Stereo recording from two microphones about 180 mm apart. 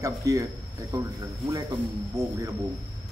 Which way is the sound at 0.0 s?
20° right (ahead or behind).